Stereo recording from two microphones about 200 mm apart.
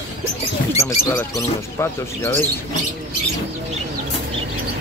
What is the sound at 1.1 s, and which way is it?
Speech, 15° left (ahead or behind).